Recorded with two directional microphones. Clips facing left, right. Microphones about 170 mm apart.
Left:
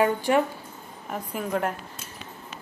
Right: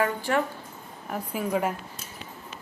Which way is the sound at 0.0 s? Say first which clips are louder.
Left 4 dB; 15° left (ahead or behind).